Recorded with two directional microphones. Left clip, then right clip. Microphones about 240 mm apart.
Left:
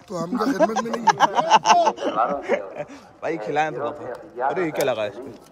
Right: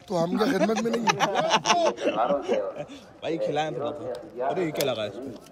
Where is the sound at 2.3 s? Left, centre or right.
Left.